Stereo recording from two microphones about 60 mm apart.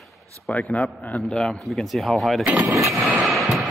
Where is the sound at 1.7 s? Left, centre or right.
Centre.